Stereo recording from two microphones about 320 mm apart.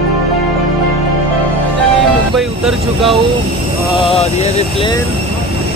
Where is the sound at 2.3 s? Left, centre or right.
Centre.